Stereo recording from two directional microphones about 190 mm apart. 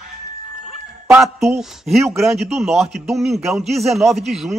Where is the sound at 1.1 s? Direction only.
Centre (ahead or behind).